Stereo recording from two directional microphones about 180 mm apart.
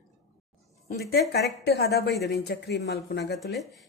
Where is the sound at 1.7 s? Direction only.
60° left (ahead or behind).